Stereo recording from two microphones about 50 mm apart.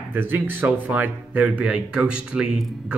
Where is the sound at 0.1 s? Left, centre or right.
Right.